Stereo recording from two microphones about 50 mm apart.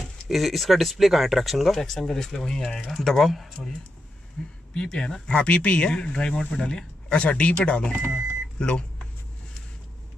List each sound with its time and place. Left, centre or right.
0.0 s speech: centre